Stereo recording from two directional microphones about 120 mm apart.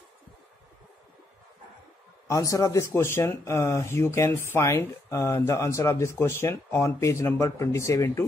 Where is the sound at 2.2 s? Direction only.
25° left (ahead or behind).